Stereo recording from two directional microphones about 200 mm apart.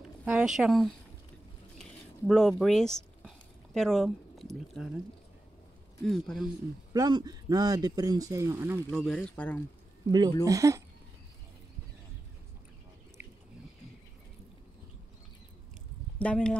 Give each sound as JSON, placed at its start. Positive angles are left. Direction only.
{"t": 0.2, "sound": "speech", "side_deg": -5}
{"t": 1.8, "sound": "a sound", "side_deg": 0}
{"t": 6.0, "sound": "speech", "side_deg": 0}
{"t": 6.9, "sound": "speech", "side_deg": -20}
{"t": 8.9, "sound": "speech", "side_deg": 5}
{"t": 10.4, "sound": "speech", "side_deg": -15}
{"t": 16.2, "sound": "speech", "side_deg": 5}